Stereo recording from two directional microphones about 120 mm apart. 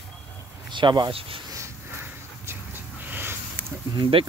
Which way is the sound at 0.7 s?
40° right (ahead or behind).